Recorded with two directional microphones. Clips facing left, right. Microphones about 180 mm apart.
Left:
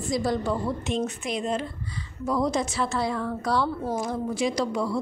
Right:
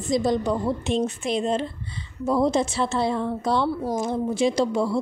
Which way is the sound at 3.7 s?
10° right (ahead or behind).